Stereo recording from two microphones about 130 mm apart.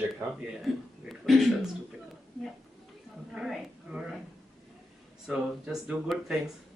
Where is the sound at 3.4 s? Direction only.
5° right (ahead or behind).